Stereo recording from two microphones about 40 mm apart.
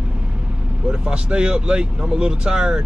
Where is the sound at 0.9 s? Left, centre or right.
Right.